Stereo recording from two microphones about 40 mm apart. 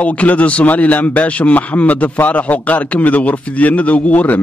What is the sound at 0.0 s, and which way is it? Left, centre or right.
A man's voice, left.